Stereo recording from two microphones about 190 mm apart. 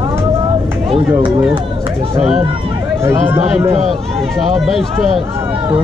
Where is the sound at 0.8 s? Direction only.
25° right (ahead or behind).